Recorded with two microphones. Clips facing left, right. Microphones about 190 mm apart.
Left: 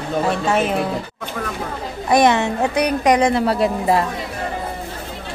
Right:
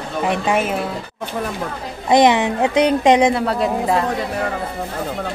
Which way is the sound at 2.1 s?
20° right (ahead or behind).